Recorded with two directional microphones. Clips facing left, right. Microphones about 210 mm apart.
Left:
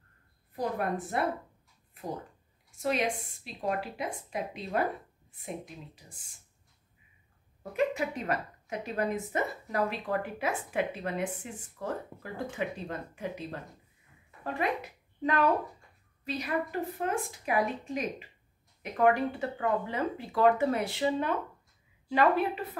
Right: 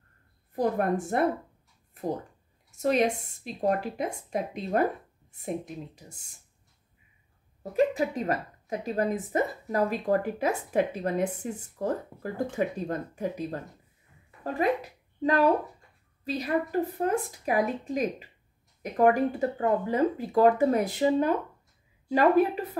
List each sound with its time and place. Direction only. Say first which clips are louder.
0.6 s speech: right 6 dB; 45° right (ahead or behind)
2.7 s speech: right 5 dB; 45° right (ahead or behind)
7.7 s speech: right 5 dB; 35° right (ahead or behind)
15.2 s speech: right 4 dB; 35° right (ahead or behind)